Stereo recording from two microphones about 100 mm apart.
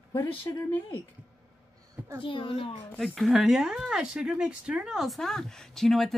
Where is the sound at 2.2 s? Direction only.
60° left (ahead or behind).